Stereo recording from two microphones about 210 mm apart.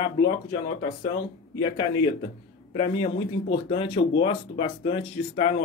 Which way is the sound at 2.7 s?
30° left (ahead or behind).